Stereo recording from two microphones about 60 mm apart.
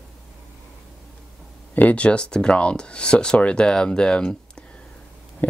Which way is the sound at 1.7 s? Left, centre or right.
Left.